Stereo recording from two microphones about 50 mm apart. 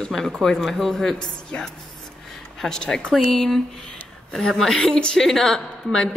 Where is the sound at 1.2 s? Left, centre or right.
Centre.